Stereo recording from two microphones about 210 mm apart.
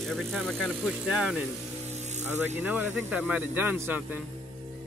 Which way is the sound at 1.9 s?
35° right (ahead or behind).